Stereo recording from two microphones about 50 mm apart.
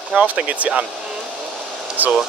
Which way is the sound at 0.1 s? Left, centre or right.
Right.